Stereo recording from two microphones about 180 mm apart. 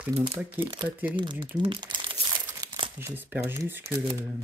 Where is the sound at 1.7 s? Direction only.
25° right (ahead or behind).